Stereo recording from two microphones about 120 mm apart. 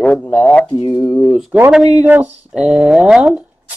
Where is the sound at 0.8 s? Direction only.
30° left (ahead or behind).